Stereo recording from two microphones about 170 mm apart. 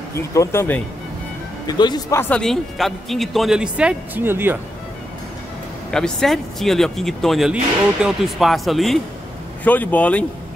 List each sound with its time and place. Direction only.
0.3 s speech: 15° left (ahead or behind)
1.7 s speech: 25° left (ahead or behind); by 4.6 s 15° right (ahead or behind)
5.9 s speech: 5° left (ahead or behind)